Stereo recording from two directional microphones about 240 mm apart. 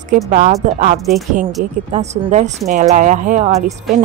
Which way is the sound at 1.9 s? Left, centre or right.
Right.